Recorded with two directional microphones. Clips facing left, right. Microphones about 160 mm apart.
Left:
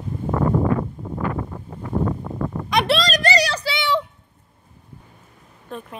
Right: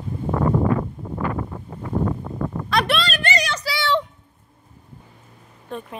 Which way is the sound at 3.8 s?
10° left (ahead or behind).